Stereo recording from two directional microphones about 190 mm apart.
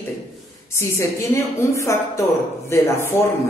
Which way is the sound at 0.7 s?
15° left (ahead or behind).